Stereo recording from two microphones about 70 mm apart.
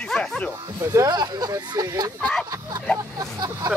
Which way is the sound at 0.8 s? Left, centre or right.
Right.